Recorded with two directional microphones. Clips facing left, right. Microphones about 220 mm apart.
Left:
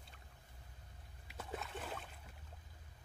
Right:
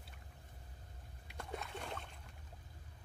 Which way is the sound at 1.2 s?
Centre (ahead or behind).